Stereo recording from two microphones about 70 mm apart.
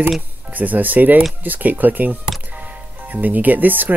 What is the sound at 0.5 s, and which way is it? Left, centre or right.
Speech, right.